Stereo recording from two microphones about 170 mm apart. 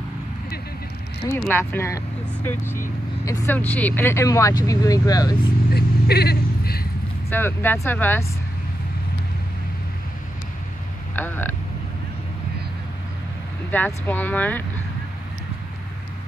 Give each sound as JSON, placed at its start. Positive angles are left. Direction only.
{"t": 1.5, "sound": "speech", "side_deg": 10}
{"t": 5.7, "sound": "vehicle", "side_deg": 65}
{"t": 7.2, "sound": "speech", "side_deg": 10}
{"t": 11.1, "sound": "speech", "side_deg": 10}
{"t": 13.7, "sound": "speech", "side_deg": 10}